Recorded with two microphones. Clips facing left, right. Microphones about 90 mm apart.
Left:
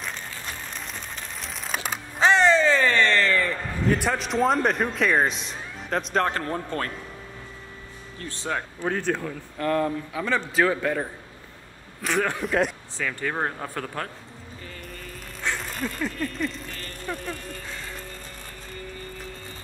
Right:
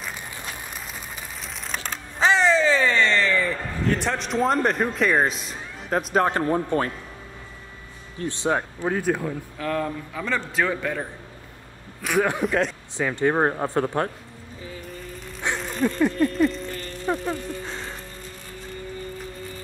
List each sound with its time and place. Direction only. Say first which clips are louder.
0.0 s a sound: even; 5° right (ahead or behind)
8.2 s speech: right 6 dB; 20° right (ahead or behind)
8.8 s speech: right 1 dB; 5° right (ahead or behind)
9.6 s a man's voice: left 4 dB; centre (ahead or behind)
12.4 s a man's voice: right 1 dB; 5° left (ahead or behind)
12.9 s speech: right 7 dB; 25° right (ahead or behind)
14.6 s music: right 5 dB; 5° right (ahead or behind)
15.5 s a sound: right 3 dB; centre (ahead or behind)
17.0 s a sound: right 7 dB; 25° right (ahead or behind)